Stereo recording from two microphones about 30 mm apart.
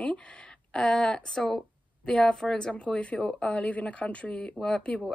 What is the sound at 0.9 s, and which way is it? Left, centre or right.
Speech, left.